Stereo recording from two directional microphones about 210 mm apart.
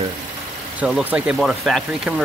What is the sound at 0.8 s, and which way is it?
Speech, 5° right (ahead or behind).